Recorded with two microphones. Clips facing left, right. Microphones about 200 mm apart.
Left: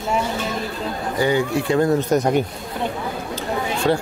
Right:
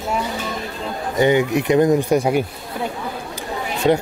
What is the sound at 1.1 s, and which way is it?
Speech, 20° right (ahead or behind).